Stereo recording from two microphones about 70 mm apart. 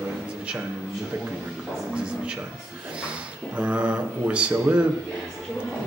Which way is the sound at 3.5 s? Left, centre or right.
Centre.